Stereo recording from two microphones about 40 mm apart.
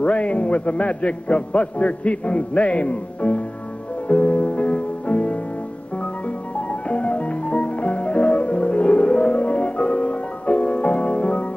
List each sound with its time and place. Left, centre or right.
0.0 s a man's voice: left
4.1 s music: left
6.9 s music: left